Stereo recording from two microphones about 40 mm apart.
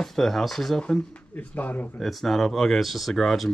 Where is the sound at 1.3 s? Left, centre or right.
Left.